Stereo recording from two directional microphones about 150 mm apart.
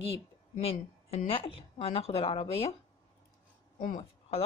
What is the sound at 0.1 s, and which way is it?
A woman's voice, 40° left (ahead or behind).